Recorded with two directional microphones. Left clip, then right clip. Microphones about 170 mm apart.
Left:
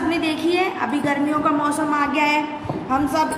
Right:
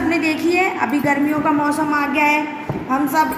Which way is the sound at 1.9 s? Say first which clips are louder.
Right 2 dB; centre (ahead or behind).